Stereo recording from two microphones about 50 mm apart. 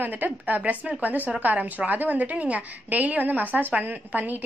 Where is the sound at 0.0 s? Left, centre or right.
Right.